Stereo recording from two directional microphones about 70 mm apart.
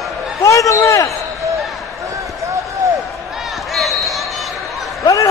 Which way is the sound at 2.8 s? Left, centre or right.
Right.